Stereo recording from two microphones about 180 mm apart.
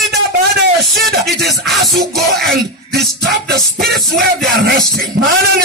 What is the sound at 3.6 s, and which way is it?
Music, centre (ahead or behind).